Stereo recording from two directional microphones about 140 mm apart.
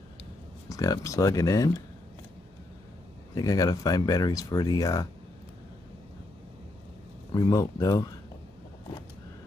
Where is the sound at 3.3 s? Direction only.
25° left (ahead or behind).